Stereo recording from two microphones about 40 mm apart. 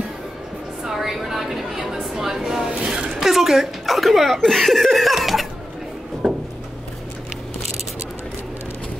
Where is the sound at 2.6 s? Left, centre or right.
Right.